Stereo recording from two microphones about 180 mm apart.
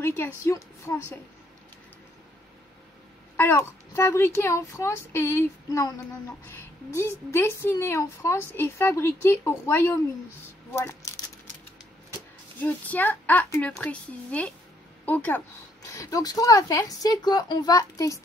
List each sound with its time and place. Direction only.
0.0 s a woman's voice: 10° left (ahead or behind)
3.3 s a woman's voice: 15° left (ahead or behind)
7.0 s a woman's voice: 15° left (ahead or behind)
12.5 s a woman's voice: 10° left (ahead or behind)